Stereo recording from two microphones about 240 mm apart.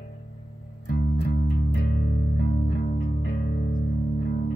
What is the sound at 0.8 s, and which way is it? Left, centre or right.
Music, left.